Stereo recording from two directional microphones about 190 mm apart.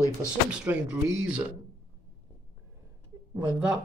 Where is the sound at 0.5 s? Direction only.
10° right (ahead or behind).